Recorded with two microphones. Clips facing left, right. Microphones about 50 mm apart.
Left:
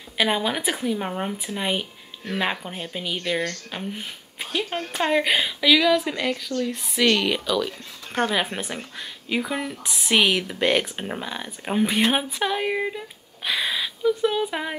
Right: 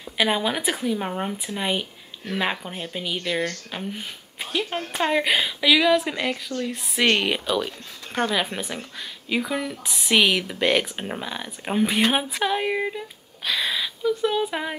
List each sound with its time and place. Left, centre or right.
0.2 s speech: centre
7.0 s speech: right
8.1 s speech: centre
13.4 s speech: centre